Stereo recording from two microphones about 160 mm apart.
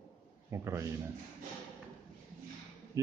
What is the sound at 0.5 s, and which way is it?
Speech, 20° right (ahead or behind).